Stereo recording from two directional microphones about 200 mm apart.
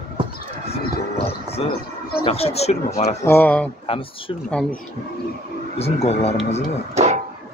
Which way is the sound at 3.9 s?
25° left (ahead or behind).